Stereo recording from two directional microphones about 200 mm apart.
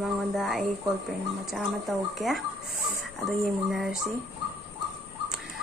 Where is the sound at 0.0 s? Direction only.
Centre (ahead or behind).